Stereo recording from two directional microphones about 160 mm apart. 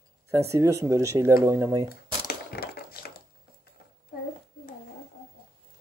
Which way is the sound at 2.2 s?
75° left (ahead or behind).